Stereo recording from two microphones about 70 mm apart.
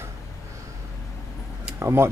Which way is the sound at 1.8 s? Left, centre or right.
Right.